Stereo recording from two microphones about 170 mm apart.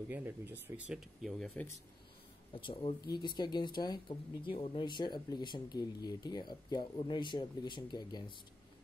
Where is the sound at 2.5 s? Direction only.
30° left (ahead or behind).